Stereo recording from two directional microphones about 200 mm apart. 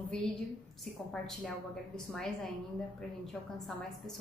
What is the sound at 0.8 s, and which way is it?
A woman's voice, centre (ahead or behind).